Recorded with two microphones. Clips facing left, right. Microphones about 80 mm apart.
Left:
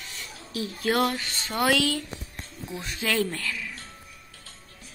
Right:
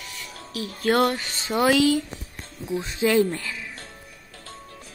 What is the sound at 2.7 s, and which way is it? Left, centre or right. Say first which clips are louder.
Speech: right 7 dB; right.